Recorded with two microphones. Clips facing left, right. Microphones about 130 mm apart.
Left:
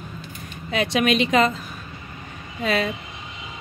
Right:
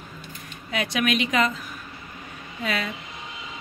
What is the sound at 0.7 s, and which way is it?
Speech, 25° left (ahead or behind).